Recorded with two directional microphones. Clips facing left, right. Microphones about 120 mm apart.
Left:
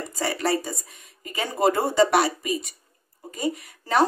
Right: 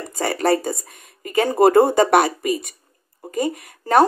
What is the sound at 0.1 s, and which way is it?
Speech, 50° right (ahead or behind).